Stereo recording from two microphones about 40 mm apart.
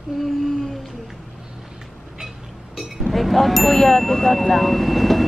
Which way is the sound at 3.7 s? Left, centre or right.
Centre.